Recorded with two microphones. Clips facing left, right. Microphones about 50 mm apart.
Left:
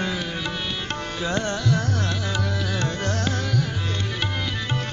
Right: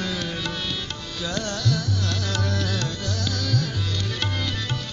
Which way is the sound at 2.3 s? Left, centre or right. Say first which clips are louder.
Even; centre.